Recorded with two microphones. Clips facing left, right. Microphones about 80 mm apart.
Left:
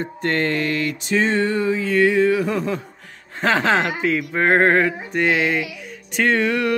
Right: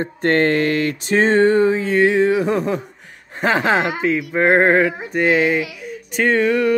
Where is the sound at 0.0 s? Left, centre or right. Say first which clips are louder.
Right 5 dB; right.